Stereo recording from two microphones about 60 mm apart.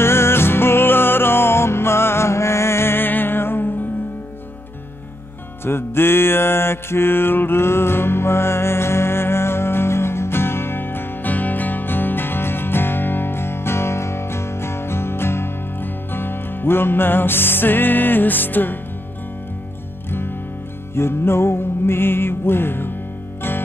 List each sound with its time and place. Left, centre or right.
0.0 s music: left
5.7 s music: left
20.1 s music: left